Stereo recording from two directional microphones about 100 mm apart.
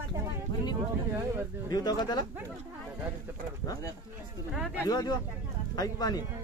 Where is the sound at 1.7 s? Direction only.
45° left (ahead or behind).